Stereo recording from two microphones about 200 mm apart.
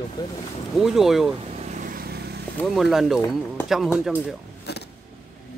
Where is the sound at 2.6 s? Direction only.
Centre (ahead or behind).